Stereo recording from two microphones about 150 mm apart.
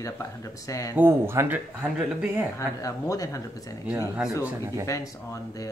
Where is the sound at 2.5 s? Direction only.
25° left (ahead or behind).